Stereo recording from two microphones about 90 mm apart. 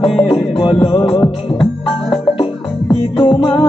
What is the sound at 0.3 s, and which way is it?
Music, 75° left (ahead or behind).